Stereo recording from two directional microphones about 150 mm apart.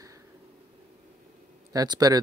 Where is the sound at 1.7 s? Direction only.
25° right (ahead or behind).